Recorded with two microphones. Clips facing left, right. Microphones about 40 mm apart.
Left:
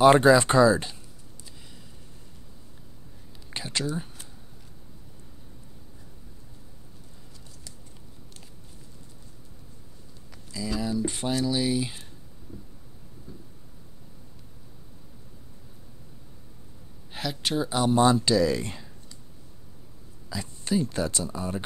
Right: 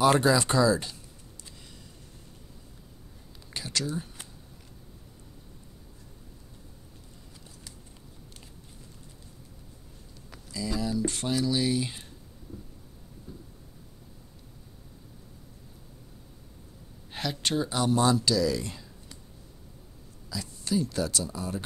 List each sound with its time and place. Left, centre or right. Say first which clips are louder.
0.0 s speech: left 6 dB; left
3.4 s speech: left 2 dB; left
10.5 s speech: left 1 dB; centre
17.1 s speech: left 1 dB; centre
17.9 s speech: left 4 dB; left
20.2 s speech: left 2 dB; left